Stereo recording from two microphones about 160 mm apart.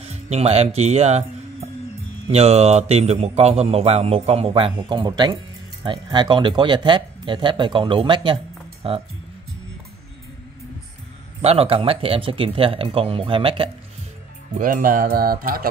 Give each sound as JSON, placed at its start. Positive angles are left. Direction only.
{"t": 0.0, "sound": "a man's voice", "side_deg": -40}
{"t": 11.4, "sound": "a man's voice", "side_deg": -35}
{"t": 14.6, "sound": "music", "side_deg": -60}